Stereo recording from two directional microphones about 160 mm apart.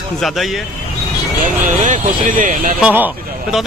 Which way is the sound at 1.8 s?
55° right (ahead or behind).